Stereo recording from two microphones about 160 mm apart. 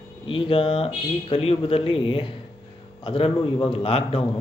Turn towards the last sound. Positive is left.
turn(degrees=35)  # may be behind; listen again after turning